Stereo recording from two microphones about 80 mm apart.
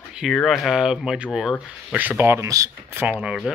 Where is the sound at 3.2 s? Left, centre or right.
Centre.